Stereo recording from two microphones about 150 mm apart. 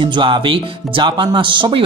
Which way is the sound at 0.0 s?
35° right (ahead or behind).